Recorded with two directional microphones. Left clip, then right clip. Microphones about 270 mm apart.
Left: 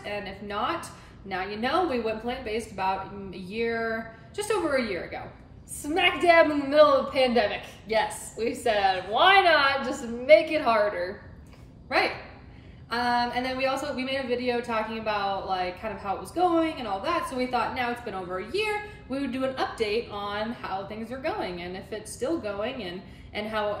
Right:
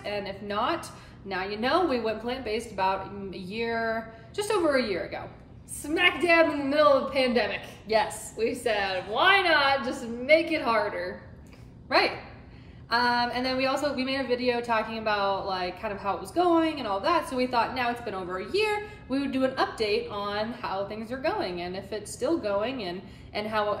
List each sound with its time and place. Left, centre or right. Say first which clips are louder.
0.0 s a woman's voice: right 1 dB; centre
5.8 s a woman's voice: even; centre
12.9 s a woman's voice: right 1 dB; centre